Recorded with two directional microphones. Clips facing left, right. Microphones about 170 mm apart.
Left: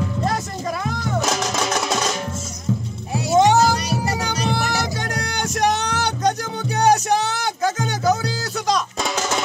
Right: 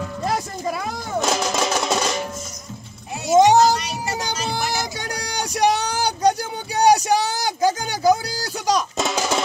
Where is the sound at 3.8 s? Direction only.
35° left (ahead or behind).